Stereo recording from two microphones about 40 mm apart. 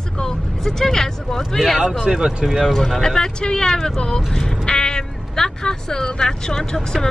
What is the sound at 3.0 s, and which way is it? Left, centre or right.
Speech, centre.